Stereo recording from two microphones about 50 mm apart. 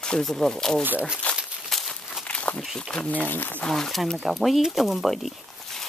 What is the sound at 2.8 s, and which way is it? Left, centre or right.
Speech, centre.